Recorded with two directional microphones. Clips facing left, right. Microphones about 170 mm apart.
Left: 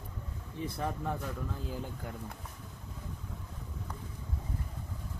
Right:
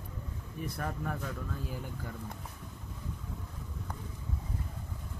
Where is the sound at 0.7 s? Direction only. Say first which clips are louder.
Left 2 dB; 20° left (ahead or behind).